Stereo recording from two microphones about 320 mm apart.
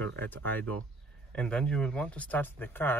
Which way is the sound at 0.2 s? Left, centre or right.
Centre.